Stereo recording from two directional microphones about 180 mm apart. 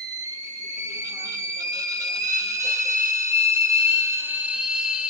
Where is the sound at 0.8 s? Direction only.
20° right (ahead or behind).